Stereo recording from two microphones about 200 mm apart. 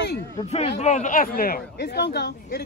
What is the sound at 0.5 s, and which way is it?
Speech, 30° left (ahead or behind).